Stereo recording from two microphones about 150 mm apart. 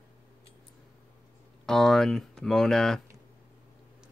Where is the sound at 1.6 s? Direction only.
Centre (ahead or behind).